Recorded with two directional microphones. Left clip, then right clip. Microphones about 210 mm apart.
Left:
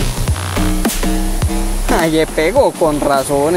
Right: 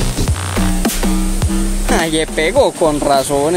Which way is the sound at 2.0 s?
Centre (ahead or behind).